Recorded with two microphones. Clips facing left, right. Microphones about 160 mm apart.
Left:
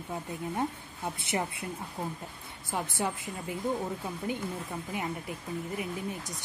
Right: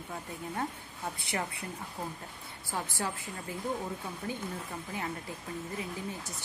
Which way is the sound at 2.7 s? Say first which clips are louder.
Left 3 dB; 20° left (ahead or behind).